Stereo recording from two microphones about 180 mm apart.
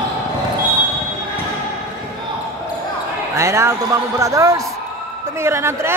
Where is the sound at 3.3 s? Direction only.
15° right (ahead or behind).